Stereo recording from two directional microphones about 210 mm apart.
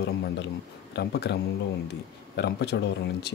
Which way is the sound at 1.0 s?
50° left (ahead or behind).